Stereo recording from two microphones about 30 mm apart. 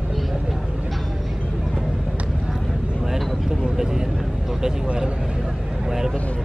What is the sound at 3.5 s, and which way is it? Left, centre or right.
Vehicle, right.